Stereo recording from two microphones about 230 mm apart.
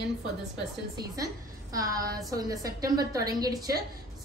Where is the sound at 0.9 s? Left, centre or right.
Centre.